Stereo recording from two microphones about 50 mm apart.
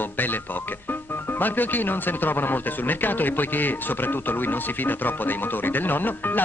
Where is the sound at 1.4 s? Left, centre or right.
Left.